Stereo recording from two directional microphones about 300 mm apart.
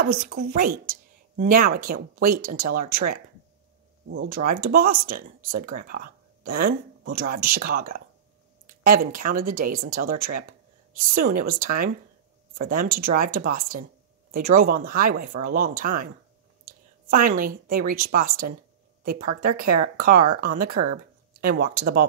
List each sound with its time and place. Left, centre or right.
0.0 s speech: right
4.1 s speech: right
5.9 s a sound: right
6.6 s speech: right
17.1 s speech: right
19.5 s speech: right